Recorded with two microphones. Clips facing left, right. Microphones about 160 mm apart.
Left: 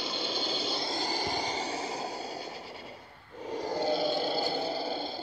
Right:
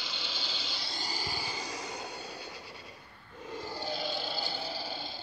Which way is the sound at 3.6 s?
40° left (ahead or behind).